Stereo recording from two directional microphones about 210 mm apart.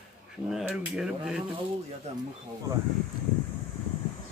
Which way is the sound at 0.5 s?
5° right (ahead or behind).